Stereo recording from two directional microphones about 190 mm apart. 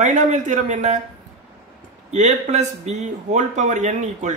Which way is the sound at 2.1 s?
35° right (ahead or behind).